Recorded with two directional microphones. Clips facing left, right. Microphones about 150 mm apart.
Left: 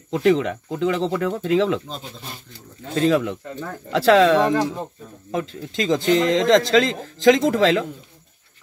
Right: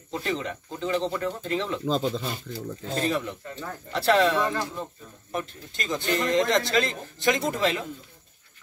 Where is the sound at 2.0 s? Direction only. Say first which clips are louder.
Right 9 dB; 90° right.